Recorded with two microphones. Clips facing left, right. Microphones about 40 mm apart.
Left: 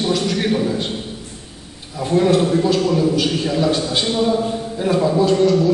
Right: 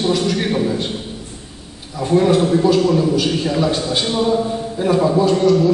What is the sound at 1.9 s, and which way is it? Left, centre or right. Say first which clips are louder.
A man's voice: right 1 dB; centre.